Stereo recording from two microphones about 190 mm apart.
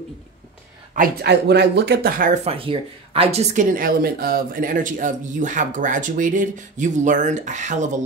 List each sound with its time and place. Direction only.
0.9 s speech: 55° right (ahead or behind); by 3.6 s 35° right (ahead or behind)
3.7 s speech: 50° right (ahead or behind)